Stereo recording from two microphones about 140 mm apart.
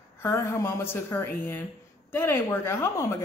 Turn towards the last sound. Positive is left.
turn(degrees=20)  # may be behind; listen again after turning